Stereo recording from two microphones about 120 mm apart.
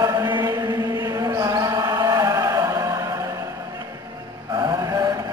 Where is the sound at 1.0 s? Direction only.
30° right (ahead or behind).